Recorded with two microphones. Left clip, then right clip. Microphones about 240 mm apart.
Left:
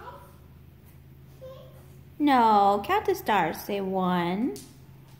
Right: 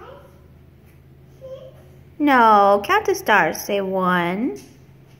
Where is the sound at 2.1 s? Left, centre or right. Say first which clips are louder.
Right 7 dB; centre.